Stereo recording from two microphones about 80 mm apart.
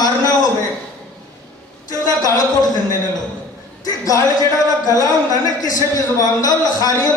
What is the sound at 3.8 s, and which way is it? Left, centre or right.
Speech, left.